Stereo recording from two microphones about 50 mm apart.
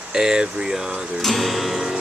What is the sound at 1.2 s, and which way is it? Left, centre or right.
Music, centre.